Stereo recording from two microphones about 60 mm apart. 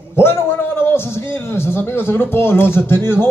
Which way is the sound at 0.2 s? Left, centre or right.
Left.